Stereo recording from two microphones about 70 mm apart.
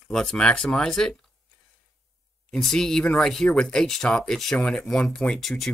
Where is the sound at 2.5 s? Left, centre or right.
Centre.